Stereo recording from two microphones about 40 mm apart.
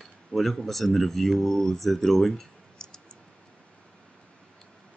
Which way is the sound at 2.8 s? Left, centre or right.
Centre.